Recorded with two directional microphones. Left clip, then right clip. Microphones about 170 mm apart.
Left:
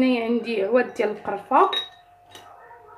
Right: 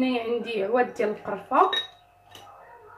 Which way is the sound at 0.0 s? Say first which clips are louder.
Left 4 dB; 35° left (ahead or behind).